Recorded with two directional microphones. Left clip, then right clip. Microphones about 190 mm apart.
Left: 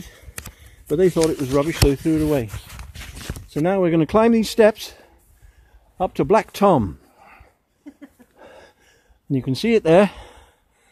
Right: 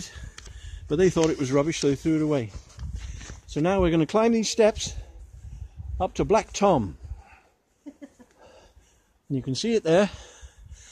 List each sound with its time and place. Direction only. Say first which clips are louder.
0.6 s speech: left 4 dB; 15° left (ahead or behind)
1.9 s speech: left 5 dB; 15° left (ahead or behind)
3.4 s speech: left 4 dB; 25° left (ahead or behind)
4.0 s speech: left 5 dB; 40° left (ahead or behind)
8.4 s a sound: left 9 dB; 40° left (ahead or behind)
9.3 s speech: left 6 dB; 40° left (ahead or behind)